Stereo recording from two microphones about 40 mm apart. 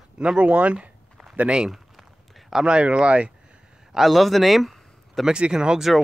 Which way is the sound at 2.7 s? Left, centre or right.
Right.